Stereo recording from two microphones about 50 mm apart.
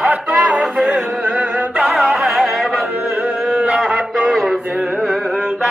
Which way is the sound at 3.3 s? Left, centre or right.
Right.